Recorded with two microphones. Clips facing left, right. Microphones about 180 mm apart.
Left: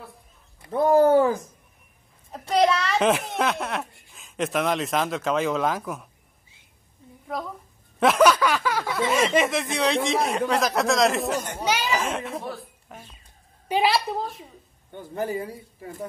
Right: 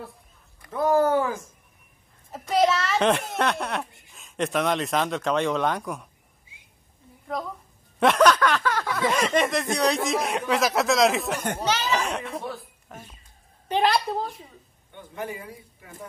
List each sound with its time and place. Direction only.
0.6 s a man's voice: 30° left (ahead or behind)
2.5 s speech: centre (ahead or behind)
7.3 s speech: centre (ahead or behind)
8.0 s a sound: 5° left (ahead or behind)
9.1 s speech: 5° left (ahead or behind)
11.3 s speech: 60° right (ahead or behind)
11.6 s speech: 10° left (ahead or behind)
14.9 s a man's voice: 40° left (ahead or behind)